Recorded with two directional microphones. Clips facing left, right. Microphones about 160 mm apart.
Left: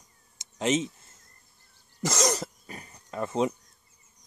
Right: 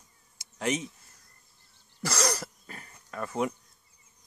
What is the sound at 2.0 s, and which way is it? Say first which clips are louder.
Throat clearing: left 3 dB; 20° left (ahead or behind).